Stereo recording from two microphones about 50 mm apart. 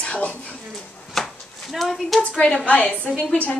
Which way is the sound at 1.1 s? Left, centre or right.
Centre.